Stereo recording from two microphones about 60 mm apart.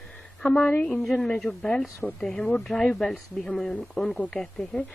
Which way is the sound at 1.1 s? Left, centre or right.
Centre.